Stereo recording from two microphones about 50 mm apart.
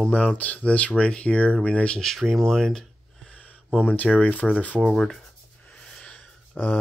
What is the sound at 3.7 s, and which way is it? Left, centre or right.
Speech, left.